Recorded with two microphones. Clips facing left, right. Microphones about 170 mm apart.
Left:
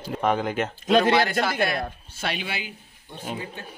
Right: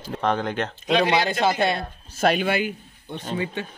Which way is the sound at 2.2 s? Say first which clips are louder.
Right 10 dB; 50° right (ahead or behind).